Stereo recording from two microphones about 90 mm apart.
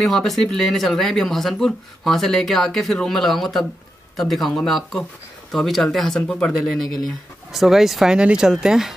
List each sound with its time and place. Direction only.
0.0 s speech: 5° left (ahead or behind)